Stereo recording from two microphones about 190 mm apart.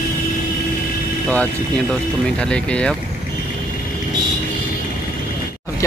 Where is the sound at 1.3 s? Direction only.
5° left (ahead or behind).